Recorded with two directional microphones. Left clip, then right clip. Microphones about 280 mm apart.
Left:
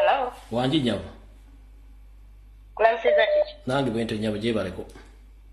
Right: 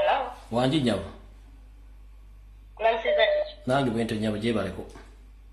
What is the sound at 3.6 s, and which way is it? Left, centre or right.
A man's voice, centre.